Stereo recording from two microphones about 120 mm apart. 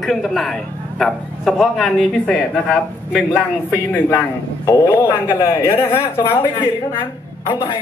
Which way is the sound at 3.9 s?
15° left (ahead or behind).